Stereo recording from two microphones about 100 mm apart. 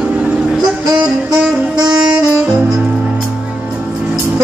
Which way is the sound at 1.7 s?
40° right (ahead or behind).